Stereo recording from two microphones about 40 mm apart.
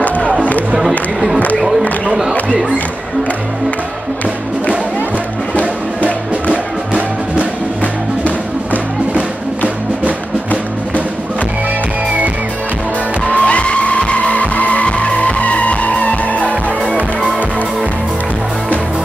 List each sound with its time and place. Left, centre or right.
0.7 s speech: centre
5.5 s music: left
13.3 s vehicle: left